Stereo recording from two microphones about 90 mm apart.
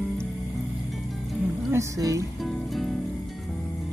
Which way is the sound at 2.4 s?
Centre (ahead or behind).